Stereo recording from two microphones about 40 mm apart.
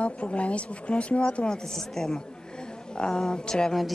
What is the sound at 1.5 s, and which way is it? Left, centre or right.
A woman's voice, centre.